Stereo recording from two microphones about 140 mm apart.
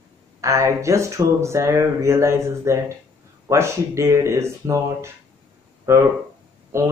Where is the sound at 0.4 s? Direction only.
20° right (ahead or behind).